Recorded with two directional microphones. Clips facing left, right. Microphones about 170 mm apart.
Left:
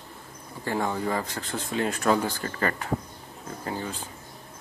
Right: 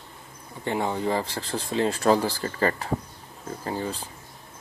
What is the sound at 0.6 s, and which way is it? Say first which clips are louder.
Speech: right 1 dB; 20° right (ahead or behind).